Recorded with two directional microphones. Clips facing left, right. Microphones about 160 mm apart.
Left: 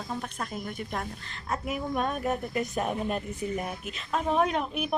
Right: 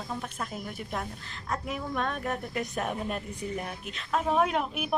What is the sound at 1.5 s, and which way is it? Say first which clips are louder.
A woman's voice: left 2 dB; 10° left (ahead or behind).